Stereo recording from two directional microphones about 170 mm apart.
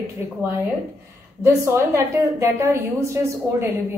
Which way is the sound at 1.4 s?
15° right (ahead or behind).